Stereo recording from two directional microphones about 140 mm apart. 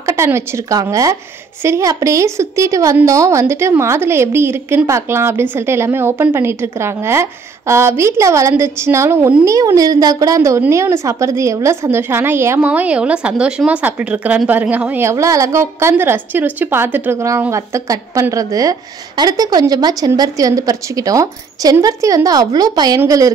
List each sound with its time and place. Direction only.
0.0 s a woman's voice: 20° right (ahead or behind)